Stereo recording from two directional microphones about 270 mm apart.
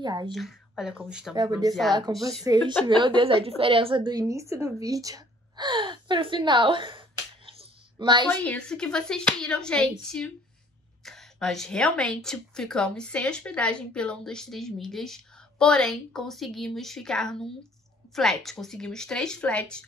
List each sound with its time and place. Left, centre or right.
0.0 s a woman's voice: centre
0.3 s a woman's voice: centre
2.1 s a woman's voice: centre
8.3 s a woman's voice: centre